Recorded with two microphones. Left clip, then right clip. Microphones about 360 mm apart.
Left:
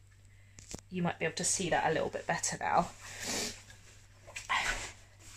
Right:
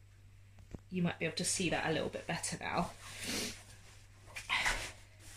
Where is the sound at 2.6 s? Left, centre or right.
Centre.